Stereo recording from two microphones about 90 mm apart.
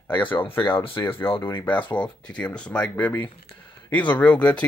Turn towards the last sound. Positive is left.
turn(degrees=15)  # may be behind; listen again after turning